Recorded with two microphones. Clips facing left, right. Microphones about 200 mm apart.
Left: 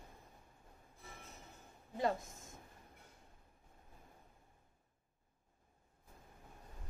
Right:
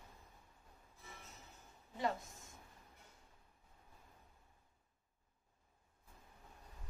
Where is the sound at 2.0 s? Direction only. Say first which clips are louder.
Left 3 dB; 45° left (ahead or behind).